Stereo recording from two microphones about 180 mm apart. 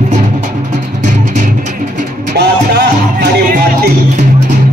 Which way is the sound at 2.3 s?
70° right (ahead or behind).